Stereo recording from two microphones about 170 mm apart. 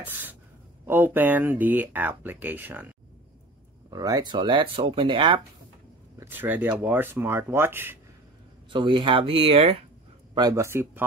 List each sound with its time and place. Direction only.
0.0 s speech: 10° right (ahead or behind)
3.9 s speech: 20° right (ahead or behind)
6.1 s speech: 10° right (ahead or behind)
8.6 s speech: 30° right (ahead or behind)
10.3 s speech: 20° right (ahead or behind)